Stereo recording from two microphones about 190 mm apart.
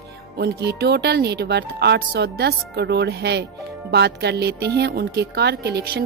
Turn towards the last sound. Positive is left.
turn(degrees=-60)  # may be behind; listen again after turning